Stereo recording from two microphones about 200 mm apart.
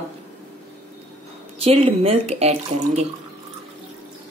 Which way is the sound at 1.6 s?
30° right (ahead or behind).